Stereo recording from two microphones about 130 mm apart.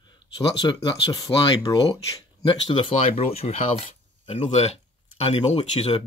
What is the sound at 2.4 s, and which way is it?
Speech, 40° left (ahead or behind).